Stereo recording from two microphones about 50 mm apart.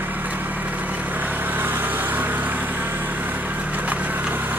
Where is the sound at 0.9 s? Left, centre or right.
Right.